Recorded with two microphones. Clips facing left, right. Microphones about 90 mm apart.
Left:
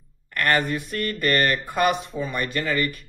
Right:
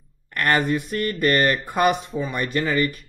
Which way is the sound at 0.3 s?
15° right (ahead or behind).